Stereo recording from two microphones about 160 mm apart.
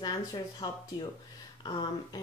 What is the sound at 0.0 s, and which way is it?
Speech, 25° left (ahead or behind).